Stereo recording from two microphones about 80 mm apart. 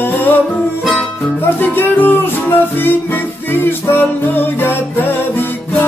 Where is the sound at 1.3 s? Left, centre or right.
Left.